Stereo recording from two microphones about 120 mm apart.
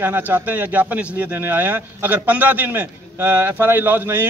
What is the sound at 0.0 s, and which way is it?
A man's voice, 15° right (ahead or behind).